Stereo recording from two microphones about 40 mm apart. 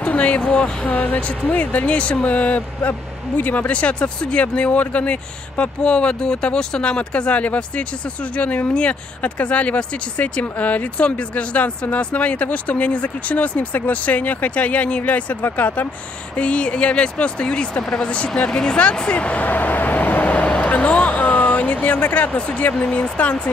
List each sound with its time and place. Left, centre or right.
0.0 s a sound: left
0.4 s speech: centre
0.9 s speech: left
2.9 s speech: left
16.3 s speech: left
22.8 s speech: left